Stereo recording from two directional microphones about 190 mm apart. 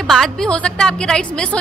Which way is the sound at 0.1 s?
Centre (ahead or behind).